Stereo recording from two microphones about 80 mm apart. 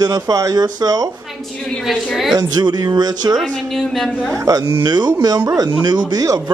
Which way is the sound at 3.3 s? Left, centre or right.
Centre.